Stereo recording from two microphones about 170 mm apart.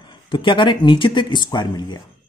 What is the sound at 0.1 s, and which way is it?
Speech, 30° left (ahead or behind).